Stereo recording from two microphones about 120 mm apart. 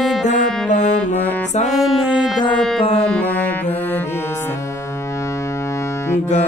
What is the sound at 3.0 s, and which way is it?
Music, 10° left (ahead or behind).